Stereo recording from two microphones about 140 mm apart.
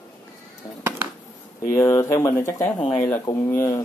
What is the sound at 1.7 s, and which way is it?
Speech, 20° left (ahead or behind).